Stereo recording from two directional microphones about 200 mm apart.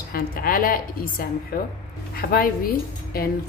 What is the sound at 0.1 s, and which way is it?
Speech, 45° left (ahead or behind).